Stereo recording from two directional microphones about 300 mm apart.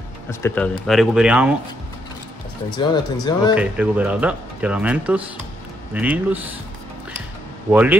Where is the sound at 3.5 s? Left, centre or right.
Centre.